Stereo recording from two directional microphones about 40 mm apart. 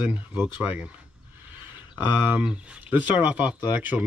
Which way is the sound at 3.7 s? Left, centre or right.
Right.